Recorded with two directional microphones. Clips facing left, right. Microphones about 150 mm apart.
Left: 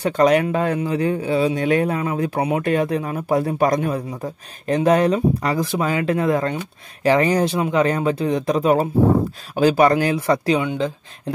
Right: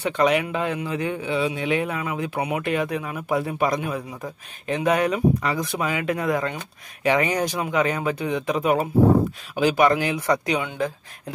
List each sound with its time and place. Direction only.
0.0 s a man's voice: 40° left (ahead or behind)
10.6 s speech: 20° left (ahead or behind)